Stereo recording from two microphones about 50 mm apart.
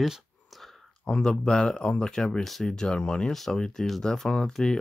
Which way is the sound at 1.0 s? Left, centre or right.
Left.